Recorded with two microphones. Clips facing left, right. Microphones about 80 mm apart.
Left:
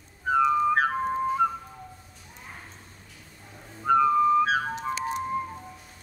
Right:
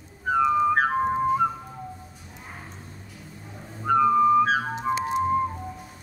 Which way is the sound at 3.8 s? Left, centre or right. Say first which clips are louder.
Right 2 dB; centre.